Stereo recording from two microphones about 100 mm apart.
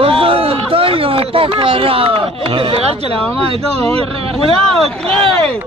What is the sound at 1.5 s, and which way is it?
A man's voice, 65° right (ahead or behind).